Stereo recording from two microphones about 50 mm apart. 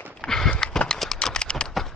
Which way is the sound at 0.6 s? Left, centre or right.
Centre.